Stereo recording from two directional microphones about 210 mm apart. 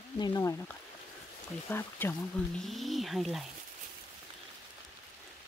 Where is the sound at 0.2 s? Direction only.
15° left (ahead or behind).